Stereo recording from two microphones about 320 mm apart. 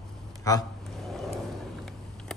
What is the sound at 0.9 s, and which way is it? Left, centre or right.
Vehicle, centre.